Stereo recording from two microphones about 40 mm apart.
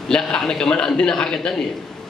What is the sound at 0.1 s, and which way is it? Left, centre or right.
A man's voice, centre.